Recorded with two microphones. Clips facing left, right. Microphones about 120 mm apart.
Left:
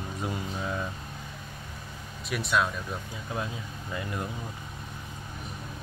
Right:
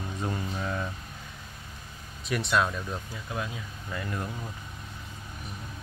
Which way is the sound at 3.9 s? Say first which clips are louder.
Even; 20° left (ahead or behind).